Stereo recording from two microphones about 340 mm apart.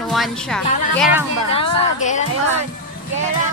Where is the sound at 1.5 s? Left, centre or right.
Centre.